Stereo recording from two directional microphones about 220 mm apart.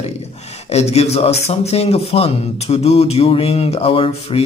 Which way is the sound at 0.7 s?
30° left (ahead or behind).